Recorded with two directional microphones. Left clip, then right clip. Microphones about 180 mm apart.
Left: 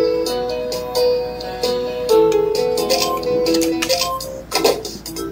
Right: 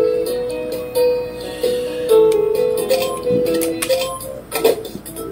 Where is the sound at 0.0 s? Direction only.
15° left (ahead or behind).